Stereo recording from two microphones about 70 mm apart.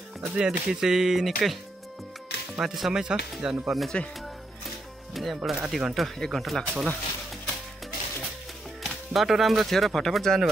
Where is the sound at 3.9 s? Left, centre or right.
Centre.